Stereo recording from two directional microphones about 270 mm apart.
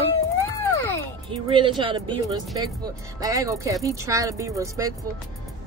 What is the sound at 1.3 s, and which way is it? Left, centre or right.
Speech, centre.